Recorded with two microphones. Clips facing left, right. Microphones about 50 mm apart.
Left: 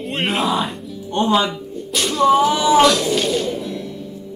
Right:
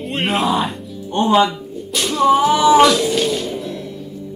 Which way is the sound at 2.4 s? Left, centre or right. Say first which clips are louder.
Right 3 dB; centre.